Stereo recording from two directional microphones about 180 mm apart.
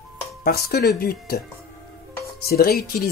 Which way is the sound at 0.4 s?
60° left (ahead or behind).